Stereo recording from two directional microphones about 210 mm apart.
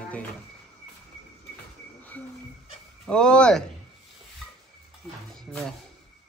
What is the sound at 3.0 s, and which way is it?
Speech, 5° left (ahead or behind).